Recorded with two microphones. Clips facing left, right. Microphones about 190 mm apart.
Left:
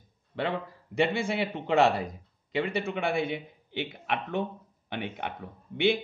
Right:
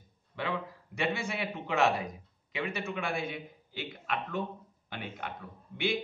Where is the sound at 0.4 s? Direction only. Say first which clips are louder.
Left 4 dB; 65° left (ahead or behind).